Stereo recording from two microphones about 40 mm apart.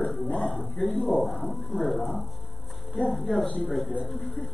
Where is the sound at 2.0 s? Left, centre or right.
Left.